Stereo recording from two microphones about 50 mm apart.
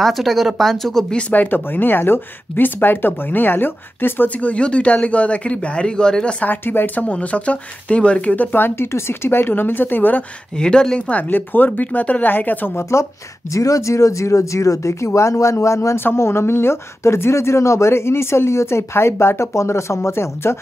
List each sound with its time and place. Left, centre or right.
0.0 s speech: centre
1.1 s speech: left
4.3 s speech: left
6.4 s speech: left
7.1 s speech: left
8.8 s speech: left
10.5 s speech: centre
11.0 s speech: left
12.9 s speech: left
13.5 s speech: left
16.2 s speech: left